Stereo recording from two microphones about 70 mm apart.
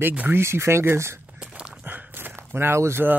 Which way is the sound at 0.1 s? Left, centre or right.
Right.